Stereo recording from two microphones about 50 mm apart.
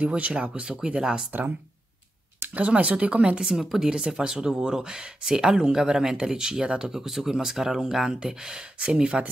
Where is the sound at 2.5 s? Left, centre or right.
Right.